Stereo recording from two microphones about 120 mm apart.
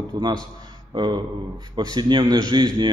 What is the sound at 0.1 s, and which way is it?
A man's voice, 35° right (ahead or behind).